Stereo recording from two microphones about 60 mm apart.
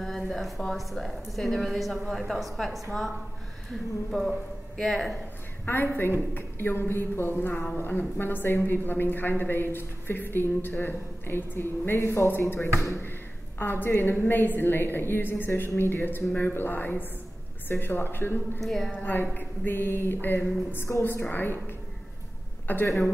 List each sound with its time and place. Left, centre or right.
0.0 s a woman's voice: centre
5.7 s a woman's voice: left
12.0 s speech: left
12.3 s a woman's voice: left
13.6 s a woman's voice: left
18.6 s a woman's voice: centre
18.9 s a woman's voice: left
19.3 s a woman's voice: left